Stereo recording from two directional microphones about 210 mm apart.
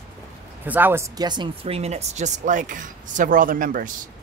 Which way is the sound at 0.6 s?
10° right (ahead or behind).